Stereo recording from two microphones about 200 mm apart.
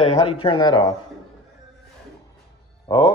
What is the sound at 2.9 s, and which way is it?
Speech, 20° left (ahead or behind).